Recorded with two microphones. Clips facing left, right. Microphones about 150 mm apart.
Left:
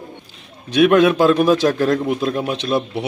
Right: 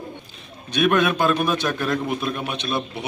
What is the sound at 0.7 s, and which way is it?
A man's voice, 90° left.